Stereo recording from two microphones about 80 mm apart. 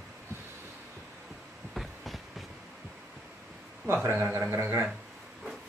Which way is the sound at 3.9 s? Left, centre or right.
Right.